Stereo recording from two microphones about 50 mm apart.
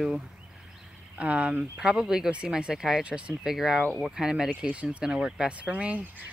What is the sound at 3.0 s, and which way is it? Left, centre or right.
Speech, right.